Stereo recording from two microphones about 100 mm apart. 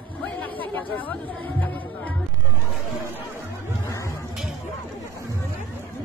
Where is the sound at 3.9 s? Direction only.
30° left (ahead or behind).